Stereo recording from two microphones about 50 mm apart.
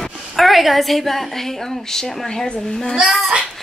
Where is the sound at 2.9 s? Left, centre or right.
Centre.